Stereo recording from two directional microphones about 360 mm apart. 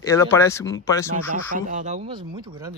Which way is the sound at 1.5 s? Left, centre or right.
Right.